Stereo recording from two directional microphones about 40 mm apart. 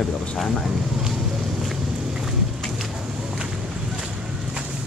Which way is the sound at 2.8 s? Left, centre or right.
Centre.